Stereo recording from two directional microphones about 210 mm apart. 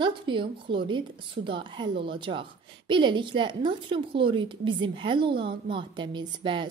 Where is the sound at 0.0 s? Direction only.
25° right (ahead or behind).